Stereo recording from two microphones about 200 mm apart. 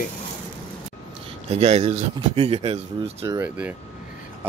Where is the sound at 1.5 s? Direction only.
30° right (ahead or behind).